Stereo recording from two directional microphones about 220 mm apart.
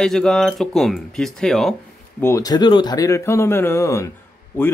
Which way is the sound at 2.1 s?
10° left (ahead or behind).